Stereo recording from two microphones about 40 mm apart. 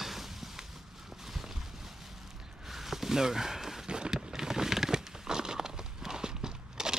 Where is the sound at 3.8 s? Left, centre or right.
Centre.